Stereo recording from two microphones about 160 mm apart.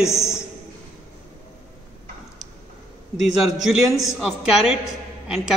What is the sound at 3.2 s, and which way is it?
A man's voice, centre (ahead or behind).